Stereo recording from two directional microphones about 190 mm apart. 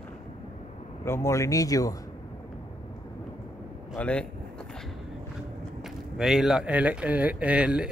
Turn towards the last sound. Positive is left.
turn(degrees=-5)  # may be behind; listen again after turning